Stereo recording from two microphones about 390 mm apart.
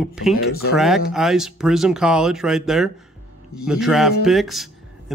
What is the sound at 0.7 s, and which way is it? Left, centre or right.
Speech, centre.